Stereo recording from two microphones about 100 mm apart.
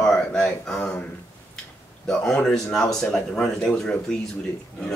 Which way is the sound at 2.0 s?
5° left (ahead or behind).